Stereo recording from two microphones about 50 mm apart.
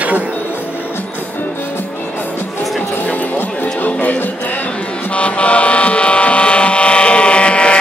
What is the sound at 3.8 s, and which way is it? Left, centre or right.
Music, left.